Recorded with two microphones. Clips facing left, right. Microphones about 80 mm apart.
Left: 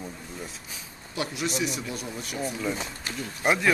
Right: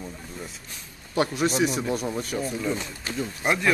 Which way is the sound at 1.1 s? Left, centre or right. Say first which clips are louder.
Right 6 dB; right.